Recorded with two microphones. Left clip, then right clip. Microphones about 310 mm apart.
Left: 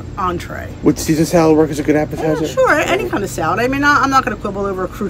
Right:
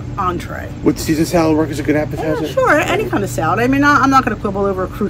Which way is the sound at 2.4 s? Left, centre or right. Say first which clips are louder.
Right 1 dB; centre.